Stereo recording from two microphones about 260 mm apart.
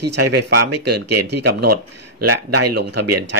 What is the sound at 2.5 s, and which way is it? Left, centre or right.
Speech, right.